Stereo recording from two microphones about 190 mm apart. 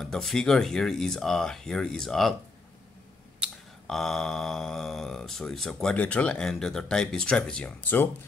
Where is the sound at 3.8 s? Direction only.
Centre (ahead or behind).